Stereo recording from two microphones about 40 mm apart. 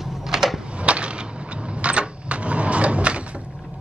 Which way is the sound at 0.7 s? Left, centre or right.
Right.